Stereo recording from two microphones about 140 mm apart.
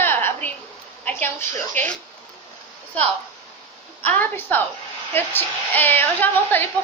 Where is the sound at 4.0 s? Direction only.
10° left (ahead or behind).